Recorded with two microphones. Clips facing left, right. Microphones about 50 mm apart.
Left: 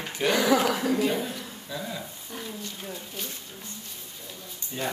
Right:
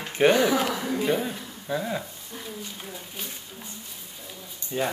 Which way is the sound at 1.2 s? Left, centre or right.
Right.